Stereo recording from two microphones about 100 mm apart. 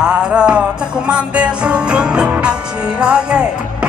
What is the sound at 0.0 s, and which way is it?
Music, 10° right (ahead or behind).